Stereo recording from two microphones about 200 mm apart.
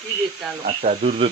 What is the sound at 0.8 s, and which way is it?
Speech, 35° right (ahead or behind).